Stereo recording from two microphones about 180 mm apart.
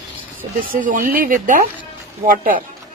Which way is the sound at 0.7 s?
50° right (ahead or behind).